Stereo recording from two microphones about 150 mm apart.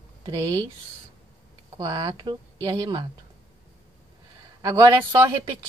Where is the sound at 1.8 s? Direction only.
25° right (ahead or behind).